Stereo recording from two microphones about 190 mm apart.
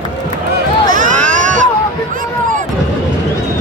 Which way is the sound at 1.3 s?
40° right (ahead or behind).